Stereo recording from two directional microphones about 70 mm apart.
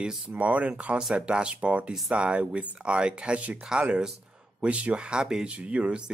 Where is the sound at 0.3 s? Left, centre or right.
Right.